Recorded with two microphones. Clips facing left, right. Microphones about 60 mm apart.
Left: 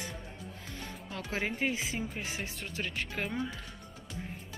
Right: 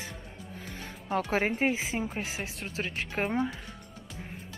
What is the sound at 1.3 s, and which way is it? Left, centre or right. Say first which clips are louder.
Speech: right 4 dB; right.